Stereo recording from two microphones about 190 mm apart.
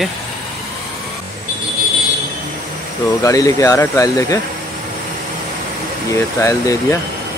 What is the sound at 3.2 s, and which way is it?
Speech, 15° left (ahead or behind).